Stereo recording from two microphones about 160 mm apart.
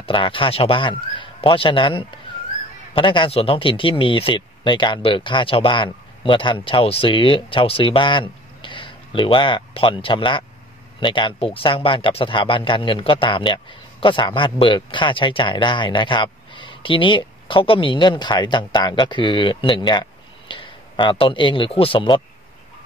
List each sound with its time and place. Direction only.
0.0 s a man's voice: 30° left (ahead or behind)